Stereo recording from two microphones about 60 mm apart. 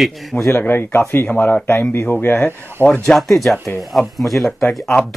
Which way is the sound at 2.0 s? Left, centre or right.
Left.